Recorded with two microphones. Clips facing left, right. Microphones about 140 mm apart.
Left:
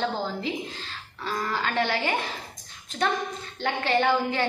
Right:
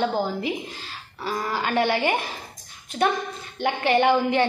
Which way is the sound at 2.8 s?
10° right (ahead or behind).